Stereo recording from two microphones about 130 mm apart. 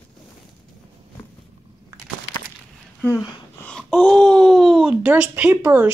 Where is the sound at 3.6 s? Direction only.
Centre (ahead or behind); by 5.9 s 15° right (ahead or behind).